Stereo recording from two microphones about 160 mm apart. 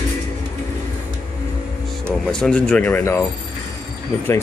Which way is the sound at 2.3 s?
5° left (ahead or behind).